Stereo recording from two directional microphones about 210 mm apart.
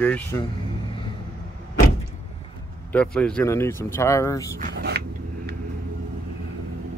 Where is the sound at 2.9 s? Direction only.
5° left (ahead or behind).